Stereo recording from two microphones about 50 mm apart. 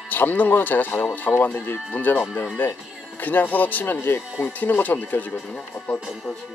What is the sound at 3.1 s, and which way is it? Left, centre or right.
A man's voice, left.